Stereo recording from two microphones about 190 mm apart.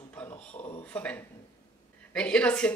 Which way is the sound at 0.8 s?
5° left (ahead or behind).